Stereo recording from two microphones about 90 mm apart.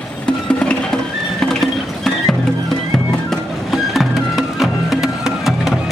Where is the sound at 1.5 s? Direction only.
5° left (ahead or behind).